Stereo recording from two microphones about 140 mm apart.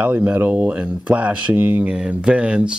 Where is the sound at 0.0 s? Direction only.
10° right (ahead or behind).